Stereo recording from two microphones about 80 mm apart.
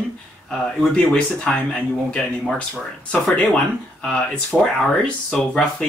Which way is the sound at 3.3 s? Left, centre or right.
Centre.